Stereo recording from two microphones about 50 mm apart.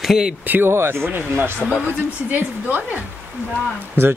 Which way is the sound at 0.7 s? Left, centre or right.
Right.